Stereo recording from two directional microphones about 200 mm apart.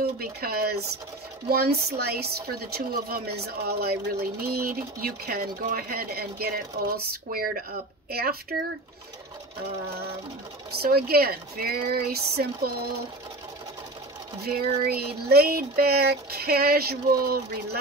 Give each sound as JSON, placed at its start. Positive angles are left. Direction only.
{"t": 0.2, "sound": "speech", "side_deg": -50}
{"t": 10.7, "sound": "speech", "side_deg": -50}
{"t": 14.4, "sound": "speech", "side_deg": -50}